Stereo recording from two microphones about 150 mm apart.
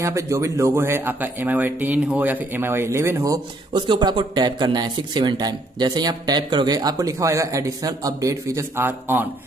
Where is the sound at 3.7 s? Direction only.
30° right (ahead or behind); by 9.3 s 15° right (ahead or behind).